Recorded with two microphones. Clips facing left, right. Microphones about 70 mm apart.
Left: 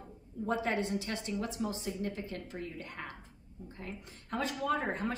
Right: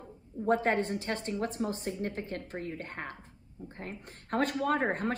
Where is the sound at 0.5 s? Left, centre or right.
Right.